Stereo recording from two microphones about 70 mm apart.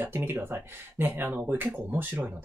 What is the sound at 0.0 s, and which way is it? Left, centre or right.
Speech, right.